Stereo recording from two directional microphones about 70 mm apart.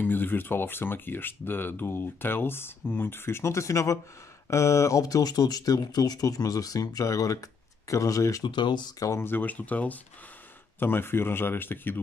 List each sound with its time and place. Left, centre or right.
0.0 s speech: left
8.5 s speech: left
9.2 s speech: left
10.8 s speech: left